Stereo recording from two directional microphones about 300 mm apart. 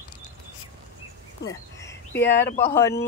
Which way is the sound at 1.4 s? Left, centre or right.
Left.